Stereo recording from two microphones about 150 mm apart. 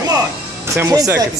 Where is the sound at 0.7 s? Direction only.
20° right (ahead or behind).